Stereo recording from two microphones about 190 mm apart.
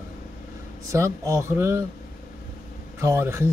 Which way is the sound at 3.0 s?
15° right (ahead or behind).